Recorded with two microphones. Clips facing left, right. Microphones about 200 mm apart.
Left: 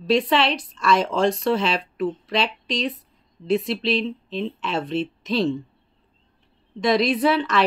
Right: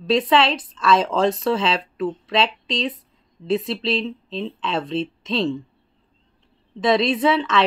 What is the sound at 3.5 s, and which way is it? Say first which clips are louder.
Speech: even; centre (ahead or behind).